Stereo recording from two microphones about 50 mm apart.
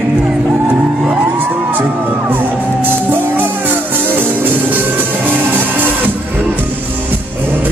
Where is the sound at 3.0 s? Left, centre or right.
Right.